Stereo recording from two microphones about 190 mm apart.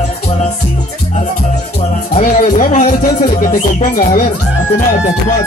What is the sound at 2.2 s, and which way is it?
Speech, 45° left (ahead or behind).